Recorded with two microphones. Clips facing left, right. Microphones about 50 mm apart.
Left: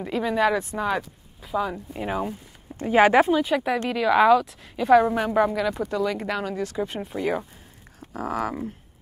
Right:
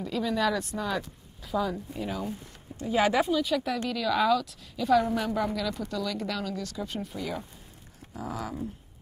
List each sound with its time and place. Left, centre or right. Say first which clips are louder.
0.0 s a woman's voice: left 5 dB; left